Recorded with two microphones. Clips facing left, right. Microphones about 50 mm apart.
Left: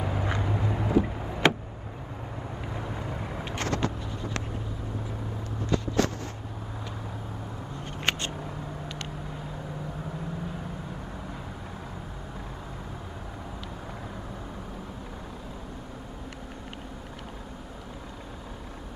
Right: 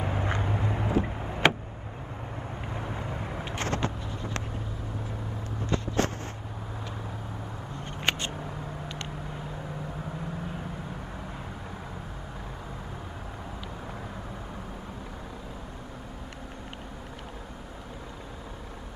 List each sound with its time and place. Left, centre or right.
0.0 s vehicle: centre
2.7 s vehicle: centre
3.5 s vehicle: right
5.7 s vehicle: right
8.0 s a sound: centre